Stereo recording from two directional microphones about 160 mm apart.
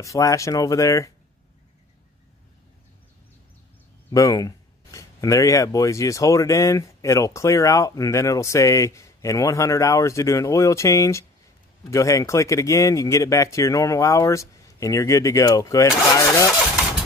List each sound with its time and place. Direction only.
0.0 s speech: 20° left (ahead or behind)
4.1 s speech: 20° left (ahead or behind)